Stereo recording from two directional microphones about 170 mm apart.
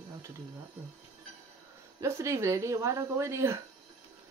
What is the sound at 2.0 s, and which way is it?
Speech, 15° right (ahead or behind).